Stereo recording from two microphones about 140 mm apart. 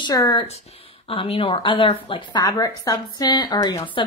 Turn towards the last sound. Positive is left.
turn(degrees=30)  # may be behind; listen again after turning